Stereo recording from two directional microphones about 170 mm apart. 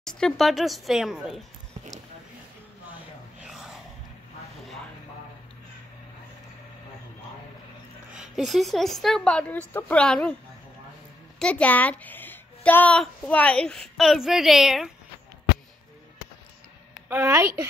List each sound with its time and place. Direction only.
0.0 s a woman's voice: 5° left (ahead or behind)
3.3 s a sound: 5° right (ahead or behind)
8.1 s a woman's voice: 5° right (ahead or behind)
11.3 s a woman's voice: 5° left (ahead or behind)
17.1 s a woman's voice: 15° right (ahead or behind)